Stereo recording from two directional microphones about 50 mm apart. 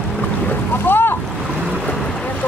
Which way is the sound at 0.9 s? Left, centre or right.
Left.